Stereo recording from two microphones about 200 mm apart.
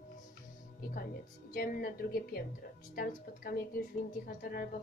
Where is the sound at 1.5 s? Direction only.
50° left (ahead or behind).